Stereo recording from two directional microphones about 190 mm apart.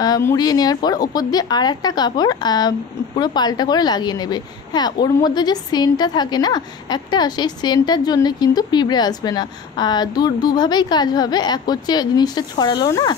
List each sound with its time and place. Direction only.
0.0 s a woman's voice: 15° left (ahead or behind)